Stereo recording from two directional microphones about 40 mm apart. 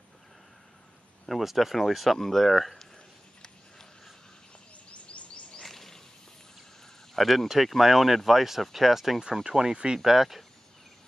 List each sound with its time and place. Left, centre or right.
1.3 s speech: centre
2.1 s speech: centre
4.9 s bird: left
5.6 s a sound: centre
7.2 s speech: centre
9.5 s speech: centre
9.9 s speech: centre